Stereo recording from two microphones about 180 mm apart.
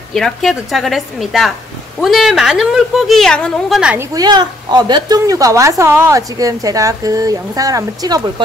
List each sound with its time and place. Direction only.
0.1 s speech: centre (ahead or behind)
4.1 s a woman's voice: 20° right (ahead or behind)